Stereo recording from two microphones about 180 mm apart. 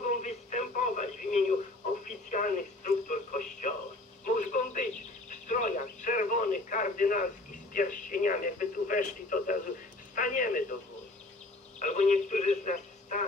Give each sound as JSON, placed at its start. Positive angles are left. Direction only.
{"t": 0.0, "sound": "radio", "side_deg": 45}
{"t": 10.1, "sound": "telephone", "side_deg": 50}
{"t": 11.8, "sound": "telephone", "side_deg": 45}